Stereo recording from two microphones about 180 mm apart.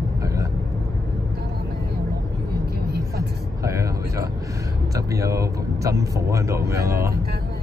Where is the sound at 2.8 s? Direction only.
60° right (ahead or behind).